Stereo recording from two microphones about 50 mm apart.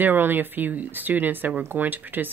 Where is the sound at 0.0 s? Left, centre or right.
Right.